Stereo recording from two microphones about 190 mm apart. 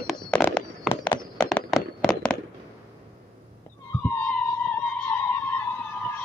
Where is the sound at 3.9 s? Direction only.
10° left (ahead or behind).